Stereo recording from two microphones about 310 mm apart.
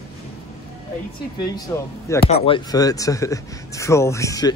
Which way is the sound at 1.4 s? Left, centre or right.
Centre.